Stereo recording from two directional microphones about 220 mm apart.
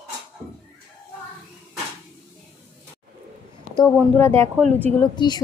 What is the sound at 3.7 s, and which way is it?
A woman's voice, 15° left (ahead or behind).